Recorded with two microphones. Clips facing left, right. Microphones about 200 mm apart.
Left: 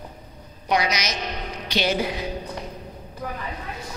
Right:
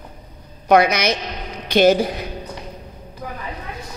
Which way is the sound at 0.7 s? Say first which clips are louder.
Right 9 dB; 55° right (ahead or behind).